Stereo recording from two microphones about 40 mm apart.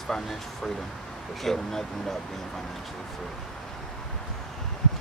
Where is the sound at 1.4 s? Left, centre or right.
Centre.